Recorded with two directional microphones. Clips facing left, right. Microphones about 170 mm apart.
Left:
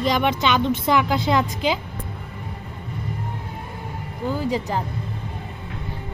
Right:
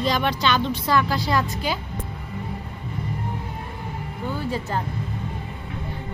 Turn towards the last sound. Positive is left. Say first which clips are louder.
# left 3 dB
turn(degrees=15)  # may be behind; listen again after turning